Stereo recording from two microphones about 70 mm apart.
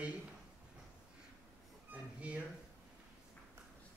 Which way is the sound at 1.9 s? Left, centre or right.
Centre.